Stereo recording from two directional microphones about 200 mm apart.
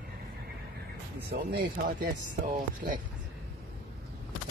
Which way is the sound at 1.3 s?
50° right (ahead or behind).